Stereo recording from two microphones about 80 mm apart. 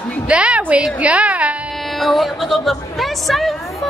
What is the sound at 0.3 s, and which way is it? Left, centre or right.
A woman's voice, centre.